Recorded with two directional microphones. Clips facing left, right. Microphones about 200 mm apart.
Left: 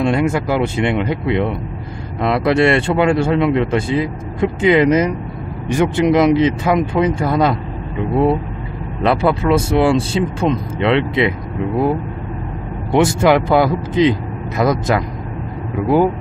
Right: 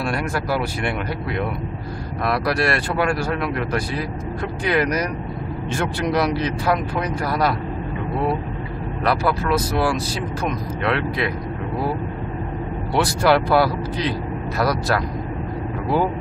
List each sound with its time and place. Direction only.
0.0 s speech: 20° left (ahead or behind)
9.0 s speech: 25° left (ahead or behind)
12.9 s speech: 20° left (ahead or behind)